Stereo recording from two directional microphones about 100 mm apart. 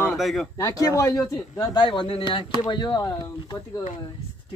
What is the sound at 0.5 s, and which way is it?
Speech, 35° left (ahead or behind).